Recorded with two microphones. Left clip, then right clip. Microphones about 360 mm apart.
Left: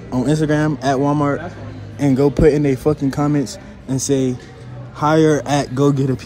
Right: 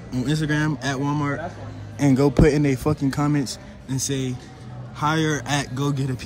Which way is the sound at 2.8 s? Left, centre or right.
Left.